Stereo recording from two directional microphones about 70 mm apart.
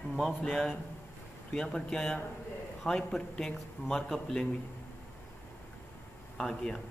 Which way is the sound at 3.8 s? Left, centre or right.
Left.